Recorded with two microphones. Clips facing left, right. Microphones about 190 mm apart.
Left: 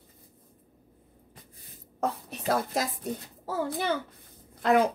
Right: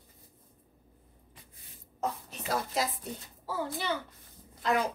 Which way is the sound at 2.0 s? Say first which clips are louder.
Left 5 dB; 50° left (ahead or behind).